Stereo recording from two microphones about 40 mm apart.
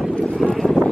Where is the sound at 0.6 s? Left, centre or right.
Left.